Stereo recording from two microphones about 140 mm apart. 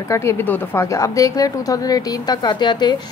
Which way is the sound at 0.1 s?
20° left (ahead or behind).